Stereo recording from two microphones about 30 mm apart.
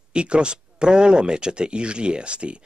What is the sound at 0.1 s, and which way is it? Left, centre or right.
Speech, right.